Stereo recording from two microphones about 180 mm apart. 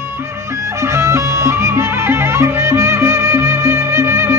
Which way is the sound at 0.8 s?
15° right (ahead or behind).